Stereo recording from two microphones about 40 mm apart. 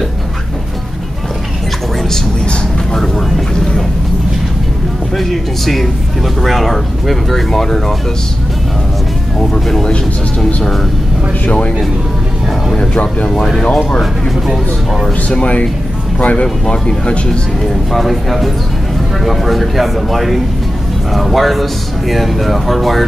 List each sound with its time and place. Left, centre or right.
2.4 s vehicle: centre
3.2 s vehicle: centre
5.1 s speech: centre
9.5 s speech: centre
12.9 s speech: left
13.8 s speech: centre
15.3 s speech: left
16.4 s speech: centre
17.9 s speech: centre